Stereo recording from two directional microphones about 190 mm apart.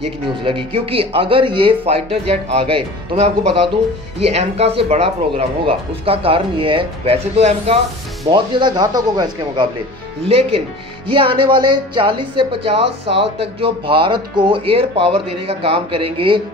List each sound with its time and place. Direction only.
0.4 s speech: 25° right (ahead or behind)